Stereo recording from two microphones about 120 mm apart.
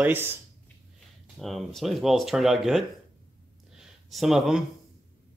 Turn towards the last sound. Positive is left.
turn(degrees=0)  # may be behind; listen again after turning